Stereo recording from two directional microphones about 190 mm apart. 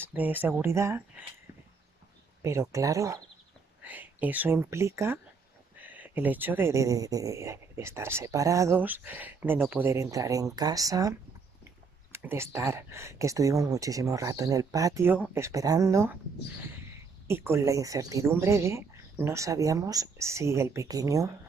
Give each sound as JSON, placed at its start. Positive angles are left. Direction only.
{"t": 0.0, "sound": "speech", "side_deg": -10}
{"t": 2.4, "sound": "speech", "side_deg": -15}
{"t": 17.3, "sound": "speech", "side_deg": -15}